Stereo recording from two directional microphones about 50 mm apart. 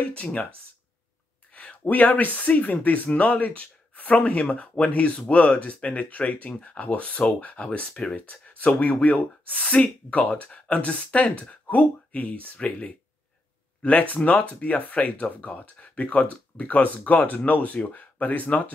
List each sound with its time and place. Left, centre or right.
0.0 s speech: left
1.5 s speech: left
13.8 s speech: left